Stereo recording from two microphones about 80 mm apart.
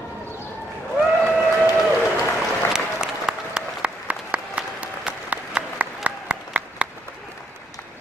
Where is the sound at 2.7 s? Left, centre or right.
Centre.